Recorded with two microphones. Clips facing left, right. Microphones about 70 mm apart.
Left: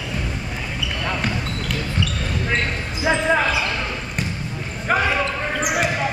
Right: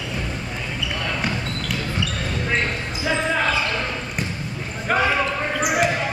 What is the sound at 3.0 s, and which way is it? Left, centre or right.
Basketball bounce, centre.